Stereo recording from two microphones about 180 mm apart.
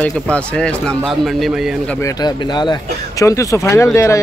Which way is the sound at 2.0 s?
20° left (ahead or behind).